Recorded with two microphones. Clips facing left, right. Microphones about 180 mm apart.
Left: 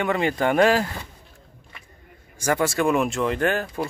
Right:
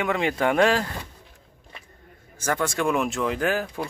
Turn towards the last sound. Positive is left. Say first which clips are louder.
# left 2 dB
turn(degrees=0)  # may be behind; listen again after turning